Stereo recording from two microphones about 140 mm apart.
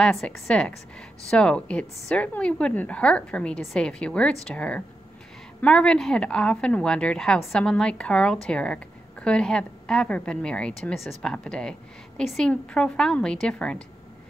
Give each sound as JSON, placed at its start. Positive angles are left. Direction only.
{"t": 0.0, "sound": "a woman's voice", "side_deg": 5}